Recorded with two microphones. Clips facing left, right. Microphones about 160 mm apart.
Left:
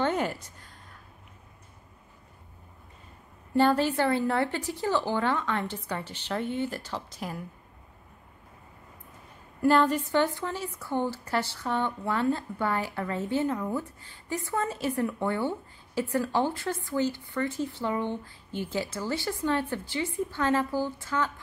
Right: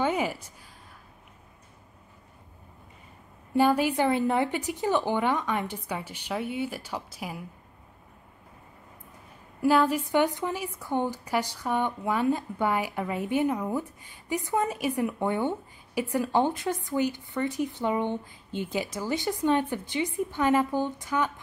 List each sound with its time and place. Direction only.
0.0 s a sound: 5° right (ahead or behind)
3.5 s a woman's voice: 10° right (ahead or behind)
9.6 s a woman's voice: 5° right (ahead or behind)